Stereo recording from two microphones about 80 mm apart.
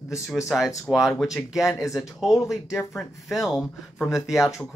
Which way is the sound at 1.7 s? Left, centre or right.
Left.